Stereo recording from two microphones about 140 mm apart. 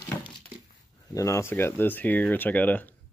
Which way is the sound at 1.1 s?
20° left (ahead or behind).